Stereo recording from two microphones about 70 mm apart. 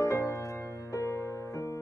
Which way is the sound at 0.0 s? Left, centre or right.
Left.